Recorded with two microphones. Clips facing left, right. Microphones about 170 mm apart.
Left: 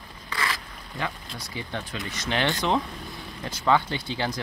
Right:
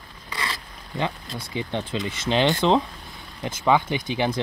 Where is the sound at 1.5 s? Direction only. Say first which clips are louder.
Right 6 dB; 20° right (ahead or behind).